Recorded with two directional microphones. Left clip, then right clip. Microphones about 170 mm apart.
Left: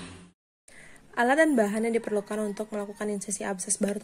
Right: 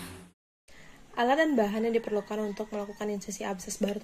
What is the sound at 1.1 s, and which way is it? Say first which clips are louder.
A woman's voice: left 3 dB; 25° left (ahead or behind).